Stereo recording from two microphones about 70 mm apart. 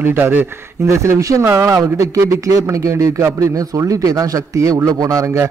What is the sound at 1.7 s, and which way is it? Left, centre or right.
A man's voice, right.